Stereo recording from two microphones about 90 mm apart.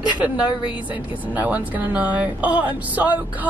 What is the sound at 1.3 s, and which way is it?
A woman's voice, 15° right (ahead or behind).